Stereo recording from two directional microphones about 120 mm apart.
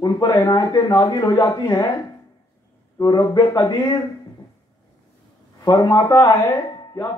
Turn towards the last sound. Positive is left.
turn(degrees=35)  # may be behind; listen again after turning